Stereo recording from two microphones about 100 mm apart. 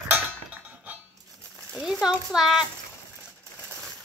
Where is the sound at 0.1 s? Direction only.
15° right (ahead or behind).